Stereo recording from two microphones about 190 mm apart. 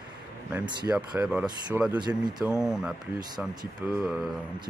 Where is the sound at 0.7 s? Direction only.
25° right (ahead or behind).